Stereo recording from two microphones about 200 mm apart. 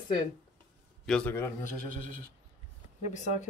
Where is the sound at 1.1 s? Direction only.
5° left (ahead or behind).